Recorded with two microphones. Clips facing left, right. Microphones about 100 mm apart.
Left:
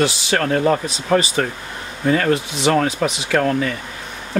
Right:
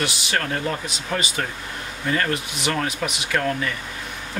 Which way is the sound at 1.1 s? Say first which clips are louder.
Left 8 dB; 30° left (ahead or behind).